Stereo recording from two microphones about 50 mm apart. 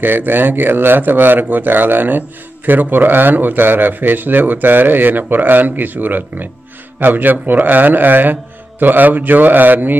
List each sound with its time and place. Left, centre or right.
0.0 s a man's voice: right